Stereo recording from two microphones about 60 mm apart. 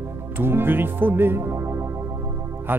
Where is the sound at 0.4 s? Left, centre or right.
Right.